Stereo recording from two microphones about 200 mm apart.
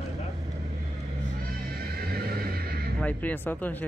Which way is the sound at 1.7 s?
50° right (ahead or behind).